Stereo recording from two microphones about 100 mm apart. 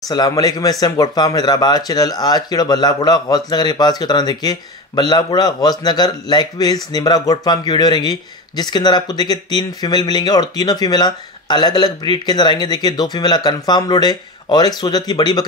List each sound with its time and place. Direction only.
0.3 s speech: 35° left (ahead or behind)